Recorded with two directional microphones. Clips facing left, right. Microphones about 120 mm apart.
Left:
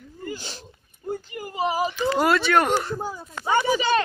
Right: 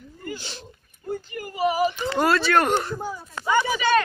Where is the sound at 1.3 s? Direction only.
20° left (ahead or behind).